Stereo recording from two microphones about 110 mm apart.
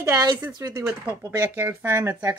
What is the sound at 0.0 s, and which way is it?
Speech, 35° right (ahead or behind).